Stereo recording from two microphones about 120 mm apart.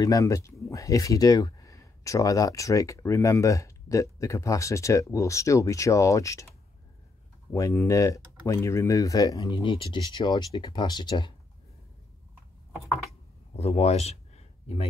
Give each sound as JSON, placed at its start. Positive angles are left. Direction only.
{"t": 0.0, "sound": "speech", "side_deg": 25}
{"t": 7.5, "sound": "speech", "side_deg": 25}
{"t": 13.6, "sound": "speech", "side_deg": 60}